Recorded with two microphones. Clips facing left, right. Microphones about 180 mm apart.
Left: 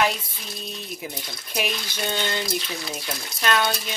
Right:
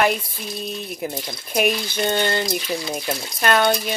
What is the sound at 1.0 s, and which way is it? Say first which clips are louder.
Speech: right 7 dB; 50° right (ahead or behind).